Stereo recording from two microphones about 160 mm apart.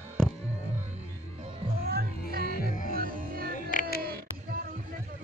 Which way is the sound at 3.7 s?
60° left (ahead or behind).